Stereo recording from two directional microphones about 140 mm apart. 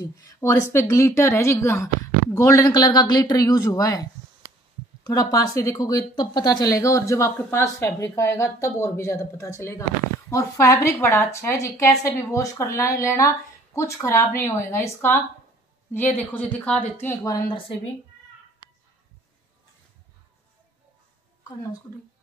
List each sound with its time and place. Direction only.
0.0 s a woman's voice: 25° left (ahead or behind)